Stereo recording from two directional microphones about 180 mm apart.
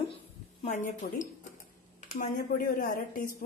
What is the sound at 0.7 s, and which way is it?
Speech, 45° left (ahead or behind).